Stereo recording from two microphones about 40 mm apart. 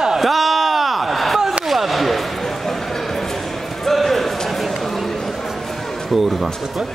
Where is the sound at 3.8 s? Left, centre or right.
Centre.